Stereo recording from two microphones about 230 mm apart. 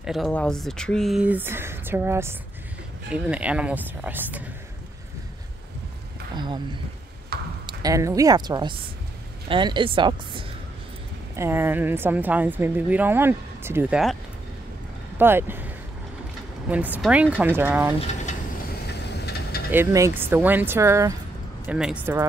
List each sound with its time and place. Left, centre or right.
0.0 s speech: centre
6.3 s speech: centre
7.3 s ping: right
7.6 s speech: centre
11.3 s speech: centre
15.1 s speech: centre
19.0 s vehicle: left
19.7 s speech: centre